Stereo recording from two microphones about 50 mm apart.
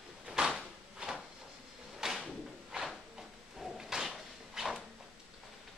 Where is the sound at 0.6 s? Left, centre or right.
Centre.